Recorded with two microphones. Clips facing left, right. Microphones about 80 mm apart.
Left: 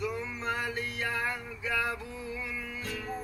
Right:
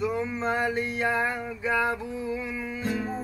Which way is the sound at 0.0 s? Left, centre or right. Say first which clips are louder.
Right 7 dB; right.